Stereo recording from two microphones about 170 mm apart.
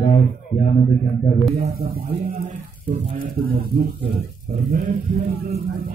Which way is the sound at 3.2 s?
60° right (ahead or behind).